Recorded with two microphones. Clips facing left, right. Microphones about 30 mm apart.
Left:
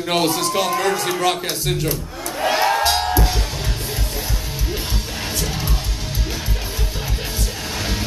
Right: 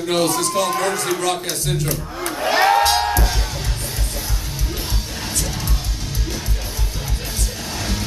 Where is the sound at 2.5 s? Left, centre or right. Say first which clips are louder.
Right 5 dB; centre.